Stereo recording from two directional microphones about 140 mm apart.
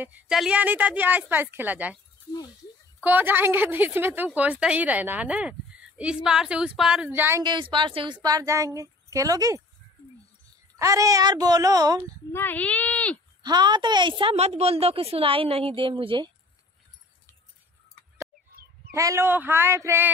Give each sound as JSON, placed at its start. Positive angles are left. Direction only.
{"t": 0.0, "sound": "a woman's voice", "side_deg": -5}
{"t": 3.0, "sound": "a woman's voice", "side_deg": -15}
{"t": 7.1, "sound": "a woman's voice", "side_deg": -15}
{"t": 7.4, "sound": "a woman's voice", "side_deg": -35}
{"t": 10.8, "sound": "a woman's voice", "side_deg": -25}
{"t": 12.3, "sound": "speech", "side_deg": 15}
{"t": 13.4, "sound": "a woman's voice", "side_deg": -30}
{"t": 18.9, "sound": "a woman's voice", "side_deg": -20}